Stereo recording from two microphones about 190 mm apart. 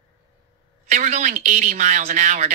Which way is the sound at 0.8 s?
35° right (ahead or behind).